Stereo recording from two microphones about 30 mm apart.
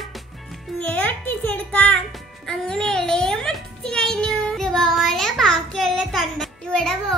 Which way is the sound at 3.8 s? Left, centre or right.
Left.